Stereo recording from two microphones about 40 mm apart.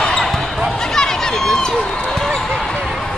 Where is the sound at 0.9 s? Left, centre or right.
Centre.